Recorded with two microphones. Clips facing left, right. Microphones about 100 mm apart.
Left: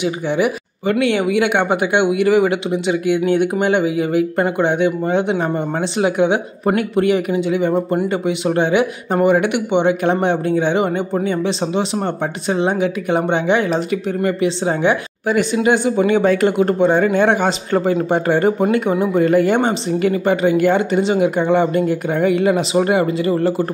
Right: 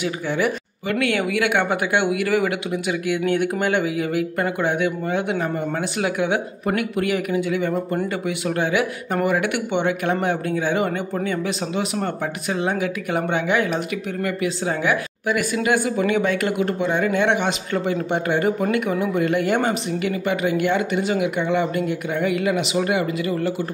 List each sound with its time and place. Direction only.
0.0 s speech: 20° left (ahead or behind); by 23.5 s 35° left (ahead or behind)